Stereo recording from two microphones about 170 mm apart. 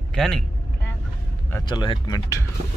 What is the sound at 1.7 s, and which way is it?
Speech, 25° left (ahead or behind).